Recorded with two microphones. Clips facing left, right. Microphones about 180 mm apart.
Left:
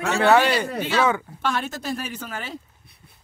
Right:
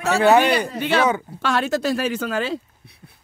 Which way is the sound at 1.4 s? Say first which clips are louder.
Right 6 dB; 90° right.